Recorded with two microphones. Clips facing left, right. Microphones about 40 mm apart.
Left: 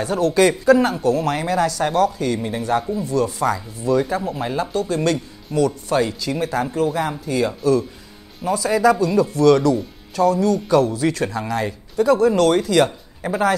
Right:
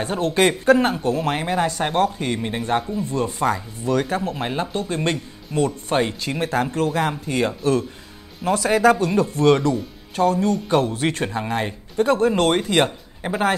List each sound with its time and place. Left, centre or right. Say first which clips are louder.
0.0 s speech: left 3 dB; right
3.9 s speech: left 2 dB; right
4.5 s speech: left 3 dB; right